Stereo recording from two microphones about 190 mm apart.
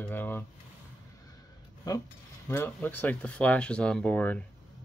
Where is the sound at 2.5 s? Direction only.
10° left (ahead or behind).